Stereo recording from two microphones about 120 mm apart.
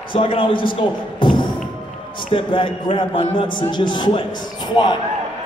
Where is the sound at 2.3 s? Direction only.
45° left (ahead or behind).